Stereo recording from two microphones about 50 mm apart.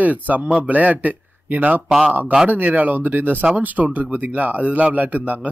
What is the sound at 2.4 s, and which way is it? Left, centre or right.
Speech, right.